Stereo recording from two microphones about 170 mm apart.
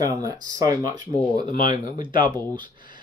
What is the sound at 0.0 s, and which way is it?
Speech, 20° right (ahead or behind).